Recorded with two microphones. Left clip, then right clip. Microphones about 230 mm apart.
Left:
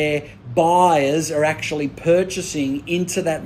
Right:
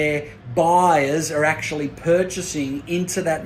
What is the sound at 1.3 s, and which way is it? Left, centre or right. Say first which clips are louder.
Speech: even; centre.